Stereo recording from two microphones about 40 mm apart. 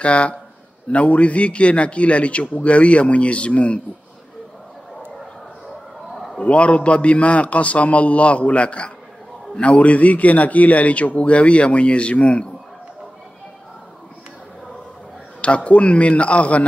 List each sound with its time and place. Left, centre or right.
0.0 s a man's voice: left
6.4 s a man's voice: left
15.4 s a man's voice: left